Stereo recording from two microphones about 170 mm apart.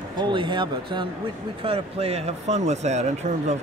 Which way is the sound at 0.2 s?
30° right (ahead or behind).